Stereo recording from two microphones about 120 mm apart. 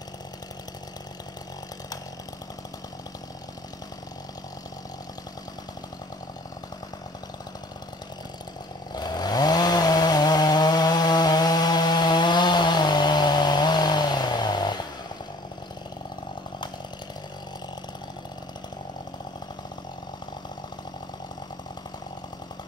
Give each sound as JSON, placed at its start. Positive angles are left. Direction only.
{"t": 8.9, "sound": "chainsaw", "side_deg": 35}